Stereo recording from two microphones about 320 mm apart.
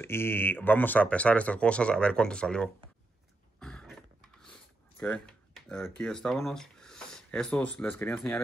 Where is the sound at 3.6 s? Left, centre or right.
Centre.